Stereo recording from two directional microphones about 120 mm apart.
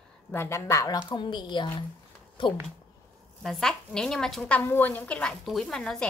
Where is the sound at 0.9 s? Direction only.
40° left (ahead or behind).